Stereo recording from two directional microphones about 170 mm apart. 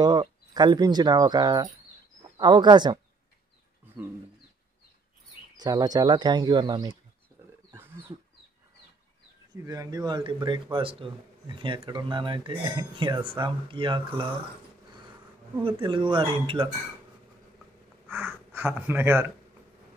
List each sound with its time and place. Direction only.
0.0 s a man's voice: 25° right (ahead or behind)
3.8 s bird: 15° right (ahead or behind)
5.6 s a man's voice: 25° right (ahead or behind)
9.7 s a man's voice: 20° right (ahead or behind)
15.6 s a man's voice: 30° right (ahead or behind)
18.1 s speech: 10° right (ahead or behind)